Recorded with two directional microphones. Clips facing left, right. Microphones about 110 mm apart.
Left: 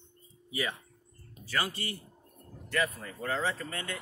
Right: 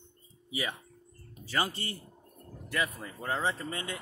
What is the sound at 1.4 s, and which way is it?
Speech, 25° right (ahead or behind).